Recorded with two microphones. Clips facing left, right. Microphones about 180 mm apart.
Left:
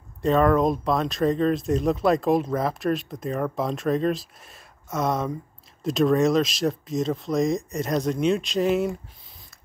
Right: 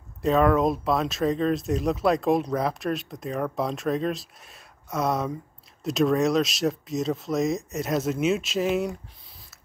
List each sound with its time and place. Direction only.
0.2 s speech: centre (ahead or behind)